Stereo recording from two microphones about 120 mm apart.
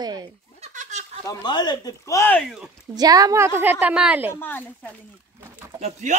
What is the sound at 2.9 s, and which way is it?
A woman's voice, 30° right (ahead or behind).